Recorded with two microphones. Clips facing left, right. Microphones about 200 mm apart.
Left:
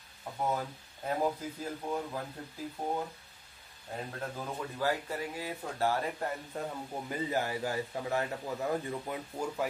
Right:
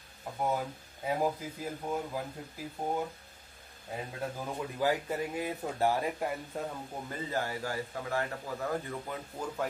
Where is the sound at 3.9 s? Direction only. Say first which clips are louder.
Right 1 dB; 10° right (ahead or behind).